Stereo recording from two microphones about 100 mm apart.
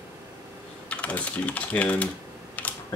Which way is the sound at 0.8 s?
15° left (ahead or behind).